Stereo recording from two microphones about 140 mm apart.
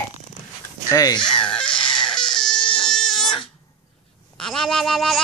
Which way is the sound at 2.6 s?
35° left (ahead or behind).